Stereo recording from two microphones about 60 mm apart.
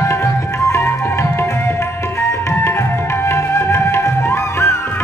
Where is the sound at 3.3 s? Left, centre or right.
Left.